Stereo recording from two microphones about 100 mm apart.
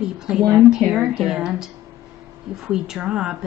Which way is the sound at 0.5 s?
5° right (ahead or behind).